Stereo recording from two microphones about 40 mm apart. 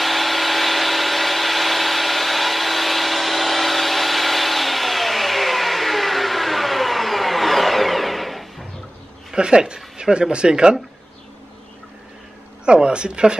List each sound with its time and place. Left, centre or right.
0.0 s power tool: centre
9.3 s speech: centre
12.6 s speech: right